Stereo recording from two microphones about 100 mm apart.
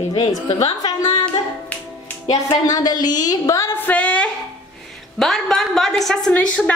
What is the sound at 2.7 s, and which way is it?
A woman's voice, 45° left (ahead or behind).